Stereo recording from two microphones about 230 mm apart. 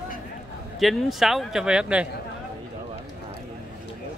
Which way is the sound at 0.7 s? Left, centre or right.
Centre.